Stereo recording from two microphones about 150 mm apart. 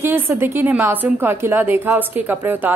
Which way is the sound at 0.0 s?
15° right (ahead or behind).